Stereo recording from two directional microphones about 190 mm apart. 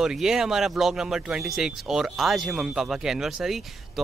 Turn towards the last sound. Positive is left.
turn(degrees=0)  # may be behind; listen again after turning